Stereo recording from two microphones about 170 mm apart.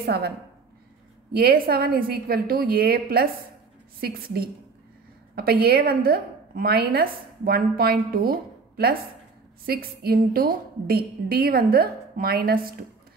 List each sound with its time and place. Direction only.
0.0 s a woman's voice: 70° right (ahead or behind)
1.3 s a woman's voice: 65° right (ahead or behind)